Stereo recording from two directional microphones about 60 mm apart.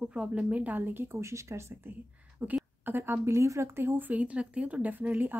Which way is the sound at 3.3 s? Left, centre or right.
Right.